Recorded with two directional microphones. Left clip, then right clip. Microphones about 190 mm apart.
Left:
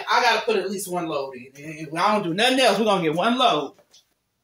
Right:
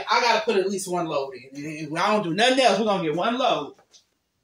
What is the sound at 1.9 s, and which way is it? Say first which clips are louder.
Speech: left 1 dB; 35° right (ahead or behind).